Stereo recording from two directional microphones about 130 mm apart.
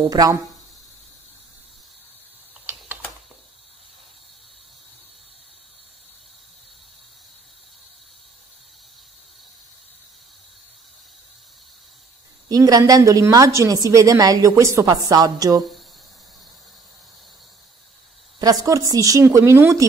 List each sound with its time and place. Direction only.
0.1 s a woman's voice: 30° right (ahead or behind)
12.4 s a woman's voice: 30° right (ahead or behind)
18.4 s a woman's voice: 30° right (ahead or behind)